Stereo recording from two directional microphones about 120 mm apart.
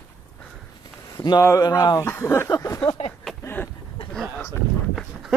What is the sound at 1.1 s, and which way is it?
Speech, 30° left (ahead or behind).